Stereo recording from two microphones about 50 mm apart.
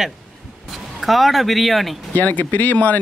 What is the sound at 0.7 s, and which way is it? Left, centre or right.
Speech, centre.